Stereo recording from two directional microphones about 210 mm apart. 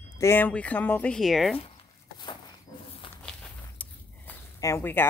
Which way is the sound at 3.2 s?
5° left (ahead or behind).